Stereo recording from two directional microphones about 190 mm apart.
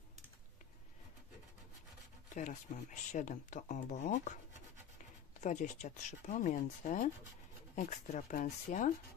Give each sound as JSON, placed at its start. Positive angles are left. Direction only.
{"t": 2.2, "sound": "speech", "side_deg": 40}
{"t": 5.4, "sound": "speech", "side_deg": 40}